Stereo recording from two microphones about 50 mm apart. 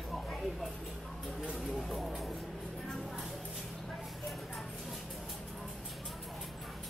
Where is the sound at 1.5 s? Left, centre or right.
Centre.